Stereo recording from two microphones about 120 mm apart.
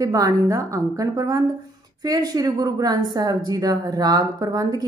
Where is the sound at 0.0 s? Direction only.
25° right (ahead or behind).